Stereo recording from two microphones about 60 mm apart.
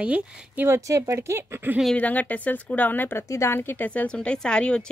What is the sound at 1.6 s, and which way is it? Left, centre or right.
Speech, right.